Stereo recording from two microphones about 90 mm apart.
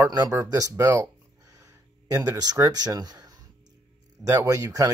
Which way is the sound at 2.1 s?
45° right (ahead or behind).